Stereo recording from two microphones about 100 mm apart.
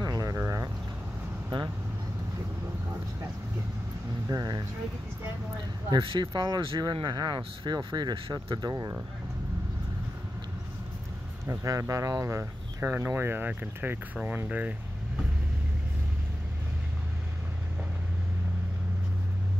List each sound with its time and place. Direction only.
0.0 s a sound: 35° right (ahead or behind)
4.3 s speech: 40° right (ahead or behind)
5.9 s speech: 50° right (ahead or behind)
11.4 s speech: 30° right (ahead or behind)